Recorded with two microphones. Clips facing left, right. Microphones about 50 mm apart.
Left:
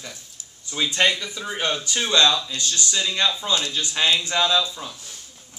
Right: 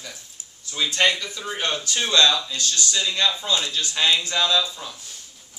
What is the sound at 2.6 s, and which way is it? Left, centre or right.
Speech, centre.